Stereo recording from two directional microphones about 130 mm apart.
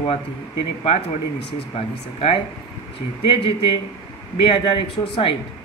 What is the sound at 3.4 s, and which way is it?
Speech, 45° left (ahead or behind).